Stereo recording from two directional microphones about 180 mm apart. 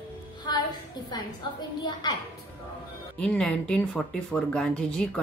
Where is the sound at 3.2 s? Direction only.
5° left (ahead or behind).